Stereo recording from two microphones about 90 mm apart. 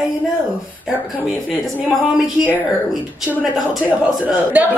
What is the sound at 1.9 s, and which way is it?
Speech, 5° right (ahead or behind).